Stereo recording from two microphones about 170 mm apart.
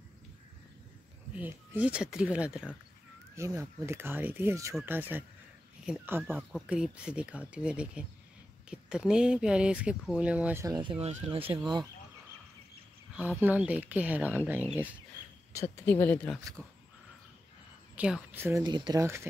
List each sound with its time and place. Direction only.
1.3 s speech: 10° right (ahead or behind)
5.9 s speech: 10° right (ahead or behind)
10.8 s speech: 35° right (ahead or behind)
13.1 s speech: 10° right (ahead or behind)
15.5 s speech: 15° left (ahead or behind)
16.6 s speech: 15° right (ahead or behind)
17.9 s speech: 5° right (ahead or behind)
18.6 s speech: 25° right (ahead or behind)